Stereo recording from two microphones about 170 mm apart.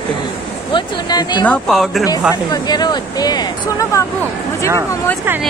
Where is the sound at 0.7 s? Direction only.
25° left (ahead or behind).